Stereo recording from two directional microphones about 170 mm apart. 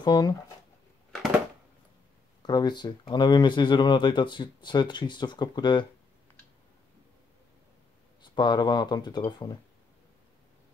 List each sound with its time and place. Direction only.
0.0 s speech: 25° left (ahead or behind)
2.4 s speech: 25° left (ahead or behind)
8.2 s speech: 25° left (ahead or behind)